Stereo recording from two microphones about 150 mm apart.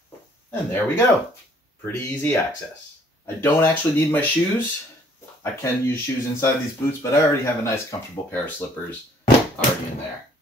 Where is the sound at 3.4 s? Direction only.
15° left (ahead or behind).